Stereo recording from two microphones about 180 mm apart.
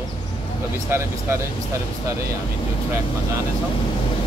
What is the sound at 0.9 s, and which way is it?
Speech, 15° right (ahead or behind).